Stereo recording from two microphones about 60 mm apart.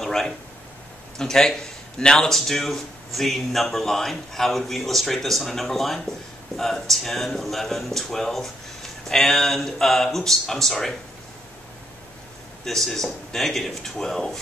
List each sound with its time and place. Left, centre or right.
0.0 s a sound: centre
1.1 s speech: centre
12.6 s speech: centre